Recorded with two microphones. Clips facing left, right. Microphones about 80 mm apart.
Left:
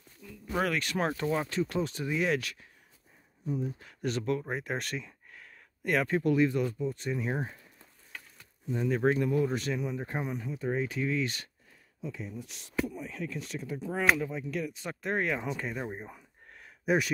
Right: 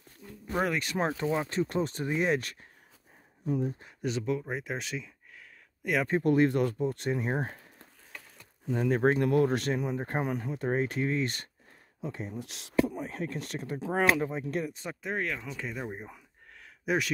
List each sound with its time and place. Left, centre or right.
0.5 s speech: centre
1.5 s speech: right
3.4 s speech: right
4.0 s speech: centre
6.2 s speech: right
8.7 s speech: right
9.2 s speech: right
12.0 s speech: right
12.4 s speech: right
12.9 s speech: right
13.9 s speech: right
14.6 s speech: right
15.0 s speech: centre